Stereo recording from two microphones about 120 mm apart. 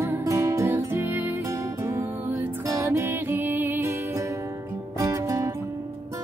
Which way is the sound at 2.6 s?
25° right (ahead or behind).